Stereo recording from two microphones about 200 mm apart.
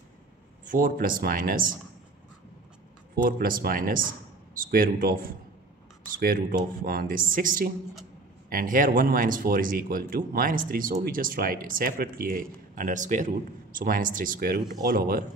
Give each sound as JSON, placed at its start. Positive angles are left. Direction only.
{"t": 0.7, "sound": "speech", "side_deg": -45}
{"t": 3.2, "sound": "speech", "side_deg": -45}